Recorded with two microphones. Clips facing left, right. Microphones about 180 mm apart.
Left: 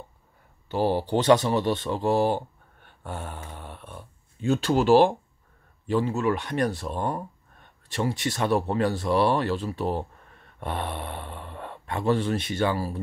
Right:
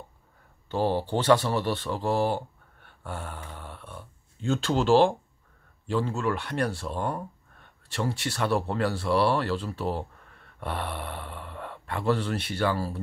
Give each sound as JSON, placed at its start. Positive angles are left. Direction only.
{"t": 0.7, "sound": "speech", "side_deg": 15}